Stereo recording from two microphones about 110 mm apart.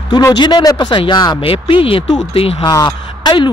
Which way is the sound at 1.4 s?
55° left (ahead or behind).